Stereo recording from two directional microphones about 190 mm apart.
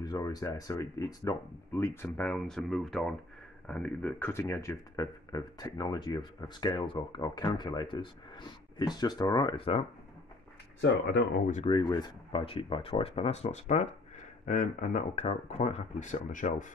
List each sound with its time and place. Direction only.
0.0 s speech: 20° left (ahead or behind)
11.7 s speech: 20° left (ahead or behind); by 16.6 s 45° left (ahead or behind)